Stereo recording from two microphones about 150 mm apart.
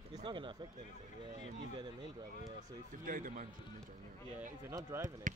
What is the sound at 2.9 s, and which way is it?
Speech, 65° right (ahead or behind).